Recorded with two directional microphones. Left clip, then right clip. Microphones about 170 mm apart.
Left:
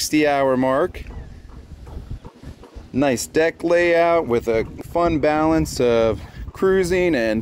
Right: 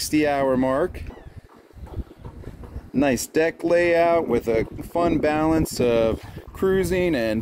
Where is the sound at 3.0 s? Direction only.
5° right (ahead or behind).